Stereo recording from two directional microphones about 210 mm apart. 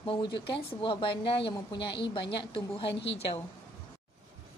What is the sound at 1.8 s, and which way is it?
A woman's voice, 55° left (ahead or behind).